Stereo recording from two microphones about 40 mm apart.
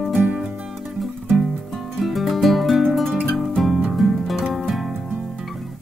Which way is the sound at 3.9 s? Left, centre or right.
Centre.